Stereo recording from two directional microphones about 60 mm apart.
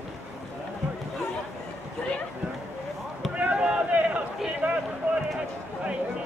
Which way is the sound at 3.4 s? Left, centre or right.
Centre.